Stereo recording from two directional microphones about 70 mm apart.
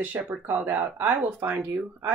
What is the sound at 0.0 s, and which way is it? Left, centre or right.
Speech, right.